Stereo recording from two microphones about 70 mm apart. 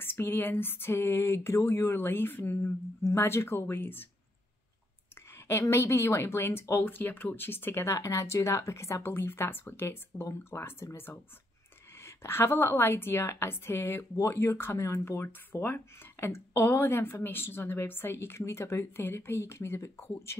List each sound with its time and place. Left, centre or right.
0.0 s a woman's voice: left
5.3 s a woman's voice: left
12.0 s a woman's voice: left